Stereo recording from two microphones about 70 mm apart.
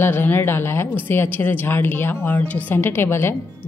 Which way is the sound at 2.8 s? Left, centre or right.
Left.